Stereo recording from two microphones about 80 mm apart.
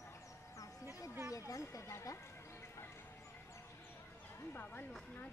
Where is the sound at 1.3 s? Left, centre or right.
Left.